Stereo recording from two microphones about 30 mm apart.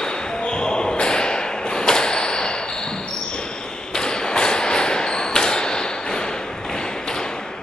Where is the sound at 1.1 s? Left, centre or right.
Left.